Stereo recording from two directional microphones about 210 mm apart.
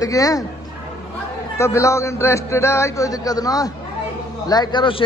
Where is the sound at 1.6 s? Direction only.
15° left (ahead or behind).